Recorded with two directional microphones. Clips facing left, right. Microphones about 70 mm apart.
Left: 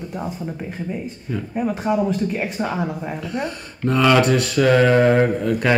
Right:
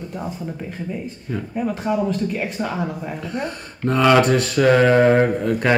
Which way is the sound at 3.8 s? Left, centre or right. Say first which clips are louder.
Right 1 dB; right.